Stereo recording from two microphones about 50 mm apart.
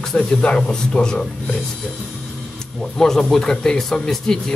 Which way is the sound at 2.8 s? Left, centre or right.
Centre.